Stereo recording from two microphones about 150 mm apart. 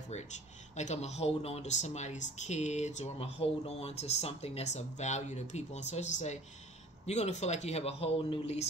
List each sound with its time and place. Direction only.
0.1 s speech: 50° left (ahead or behind)